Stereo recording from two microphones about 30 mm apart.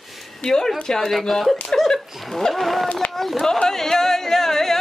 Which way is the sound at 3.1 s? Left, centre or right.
Centre.